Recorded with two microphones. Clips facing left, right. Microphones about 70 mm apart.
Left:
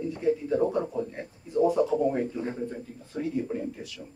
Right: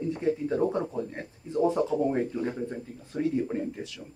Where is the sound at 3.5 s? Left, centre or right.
Right.